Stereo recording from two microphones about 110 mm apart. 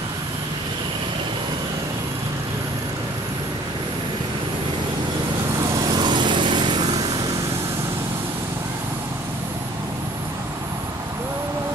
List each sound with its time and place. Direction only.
5.9 s vehicle: 45° right (ahead or behind)